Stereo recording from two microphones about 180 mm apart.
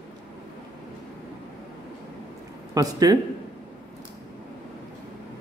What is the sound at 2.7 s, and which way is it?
Speech, 20° right (ahead or behind).